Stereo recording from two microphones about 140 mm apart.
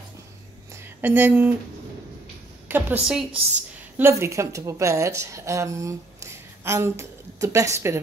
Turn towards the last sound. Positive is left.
turn(degrees=-20)  # may be behind; listen again after turning